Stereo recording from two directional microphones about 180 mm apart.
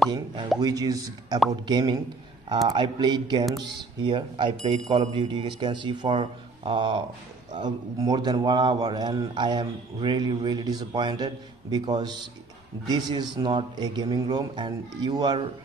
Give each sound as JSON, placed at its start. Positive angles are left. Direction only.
{"t": 0.6, "sound": "a man's voice", "side_deg": -20}